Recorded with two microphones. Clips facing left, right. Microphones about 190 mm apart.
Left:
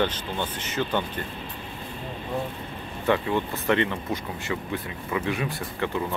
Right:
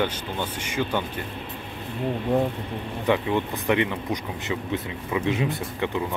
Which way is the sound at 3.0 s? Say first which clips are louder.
Right 1 dB; 15° right (ahead or behind).